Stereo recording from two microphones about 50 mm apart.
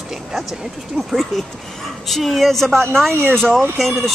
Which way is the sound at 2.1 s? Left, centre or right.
Centre.